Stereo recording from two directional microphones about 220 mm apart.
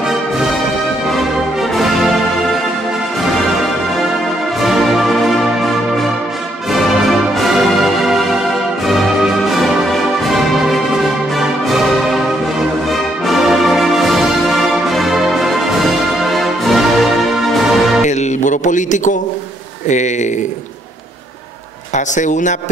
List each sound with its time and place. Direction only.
1.8 s music: centre (ahead or behind)
4.6 s music: centre (ahead or behind)
13.3 s music: centre (ahead or behind)
18.0 s music: 35° left (ahead or behind)
21.9 s speech: 35° left (ahead or behind)